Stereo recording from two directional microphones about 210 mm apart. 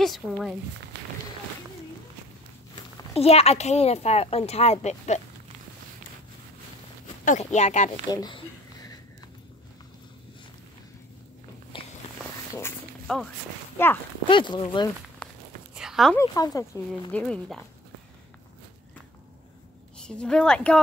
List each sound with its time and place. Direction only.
0.0 s speech: centre (ahead or behind)
0.9 s run: 50° right (ahead or behind)
3.2 s speech: 30° left (ahead or behind)
7.2 s speech: 35° left (ahead or behind)
8.1 s a sound: 20° left (ahead or behind)
11.7 s walk: 25° left (ahead or behind)
12.5 s walk: 5° left (ahead or behind)
13.8 s speech: 10° left (ahead or behind)
14.2 s speech: 20° left (ahead or behind)
15.2 s a sound: 5° left (ahead or behind)
16.2 s speech: 15° left (ahead or behind)
20.1 s speech: 5° left (ahead or behind)